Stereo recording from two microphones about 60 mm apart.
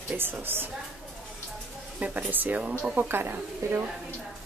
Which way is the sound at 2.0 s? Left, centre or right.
Right.